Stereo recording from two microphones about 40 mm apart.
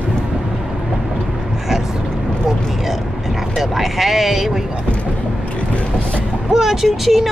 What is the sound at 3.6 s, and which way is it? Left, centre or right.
Speech, centre.